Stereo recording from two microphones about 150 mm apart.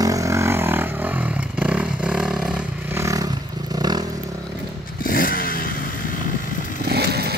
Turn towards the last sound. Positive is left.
turn(degrees=-90)